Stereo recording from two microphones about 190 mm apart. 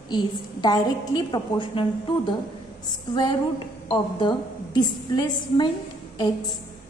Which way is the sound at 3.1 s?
25° left (ahead or behind).